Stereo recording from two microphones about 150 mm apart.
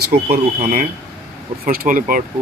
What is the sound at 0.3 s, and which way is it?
Speech, 65° right (ahead or behind).